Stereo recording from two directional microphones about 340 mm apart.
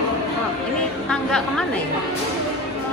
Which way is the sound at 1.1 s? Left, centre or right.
Centre.